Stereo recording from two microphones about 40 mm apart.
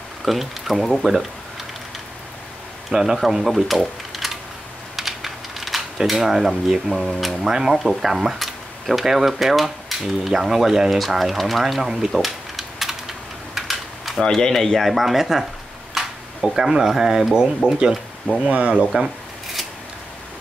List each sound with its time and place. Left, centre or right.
0.2 s speech: centre
2.9 s speech: centre
4.9 s typing: centre
5.9 s speech: centre
11.7 s a sound: centre
13.6 s typing: centre
14.2 s speech: centre
14.9 s speech: centre
15.9 s a sound: centre
16.7 s speech: centre
18.5 s speech: right